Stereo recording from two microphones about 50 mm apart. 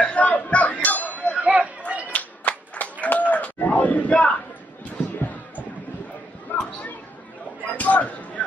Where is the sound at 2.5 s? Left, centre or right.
Left.